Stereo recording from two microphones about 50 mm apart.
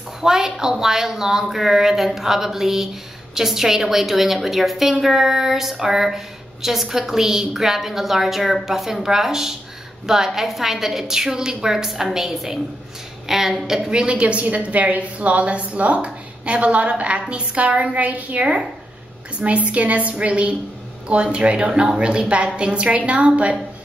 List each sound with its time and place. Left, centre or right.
0.2 s a woman's voice: centre
13.7 s a woman's voice: centre